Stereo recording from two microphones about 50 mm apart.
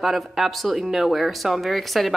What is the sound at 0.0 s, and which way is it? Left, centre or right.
Speech, centre.